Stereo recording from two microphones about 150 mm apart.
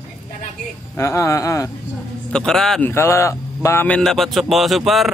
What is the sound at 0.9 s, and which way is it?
Speech, 20° left (ahead or behind).